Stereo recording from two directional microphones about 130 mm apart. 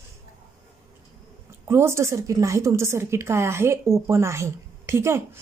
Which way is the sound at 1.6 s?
20° right (ahead or behind).